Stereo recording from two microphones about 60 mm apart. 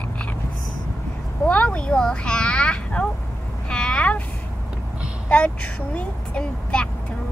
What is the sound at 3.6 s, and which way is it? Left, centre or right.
Vehicle, centre.